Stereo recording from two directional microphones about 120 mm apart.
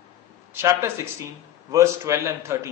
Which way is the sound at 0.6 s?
20° right (ahead or behind).